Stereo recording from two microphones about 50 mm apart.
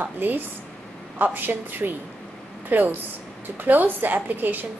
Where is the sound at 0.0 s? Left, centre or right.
Right.